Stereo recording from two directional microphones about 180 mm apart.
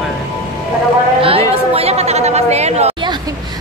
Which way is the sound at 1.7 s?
35° right (ahead or behind).